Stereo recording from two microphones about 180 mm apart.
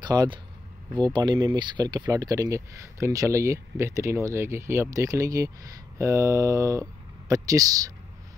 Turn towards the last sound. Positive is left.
turn(degrees=-20)  # may be behind; listen again after turning